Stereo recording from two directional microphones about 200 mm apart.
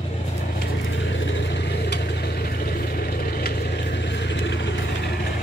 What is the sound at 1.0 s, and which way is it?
Vehicle, 70° left (ahead or behind).